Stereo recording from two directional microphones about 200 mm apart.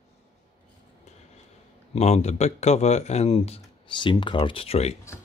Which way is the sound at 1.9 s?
35° left (ahead or behind).